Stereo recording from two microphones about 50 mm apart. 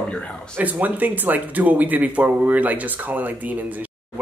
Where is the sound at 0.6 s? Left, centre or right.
Right.